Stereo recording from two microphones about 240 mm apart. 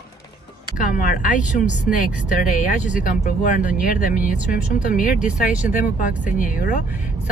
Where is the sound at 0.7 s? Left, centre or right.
Left.